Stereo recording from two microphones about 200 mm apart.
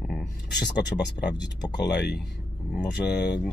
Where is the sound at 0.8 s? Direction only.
55° left (ahead or behind).